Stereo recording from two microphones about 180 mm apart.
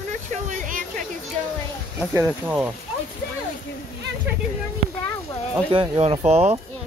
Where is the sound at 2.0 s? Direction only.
10° right (ahead or behind).